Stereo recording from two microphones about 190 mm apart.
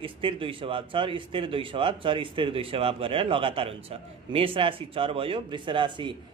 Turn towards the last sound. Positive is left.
turn(degrees=-25)  # may be behind; listen again after turning